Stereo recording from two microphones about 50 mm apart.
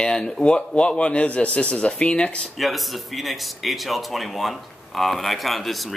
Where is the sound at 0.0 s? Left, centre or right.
Centre.